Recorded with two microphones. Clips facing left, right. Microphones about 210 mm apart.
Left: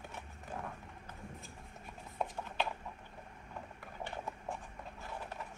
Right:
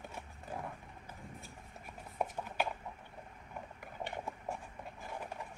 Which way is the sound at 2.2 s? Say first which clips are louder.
Right 1 dB; 10° right (ahead or behind).